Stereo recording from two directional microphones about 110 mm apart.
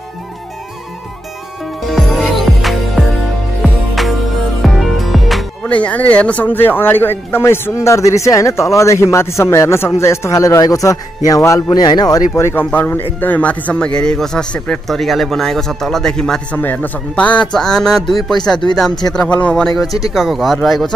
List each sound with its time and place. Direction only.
1.9 s music: centre (ahead or behind)
4.6 s music: centre (ahead or behind)
5.7 s speech: 10° left (ahead or behind); by 12.2 s 40° left (ahead or behind)
12.4 s speech: 20° left (ahead or behind); by 16.3 s 5° left (ahead or behind)
16.5 s speech: 15° left (ahead or behind)